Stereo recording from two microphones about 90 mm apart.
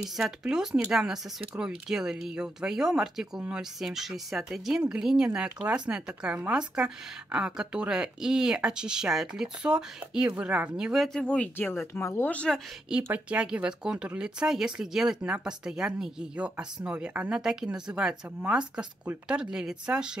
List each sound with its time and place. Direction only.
0.0 s speech: 5° right (ahead or behind)
11.1 s speech: 15° left (ahead or behind)
12.3 s speech: 15° left (ahead or behind)
12.9 s speech: 15° right (ahead or behind)